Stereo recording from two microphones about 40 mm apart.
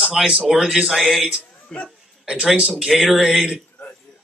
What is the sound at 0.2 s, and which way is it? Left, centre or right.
Speech, centre.